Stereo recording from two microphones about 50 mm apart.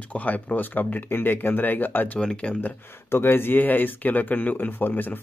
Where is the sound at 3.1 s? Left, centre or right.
Left.